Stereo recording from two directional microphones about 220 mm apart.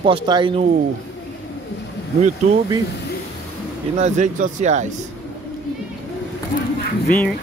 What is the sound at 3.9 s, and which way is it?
Speech, 35° right (ahead or behind).